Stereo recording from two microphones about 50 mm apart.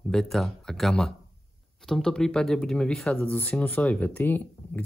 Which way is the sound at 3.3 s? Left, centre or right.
Left.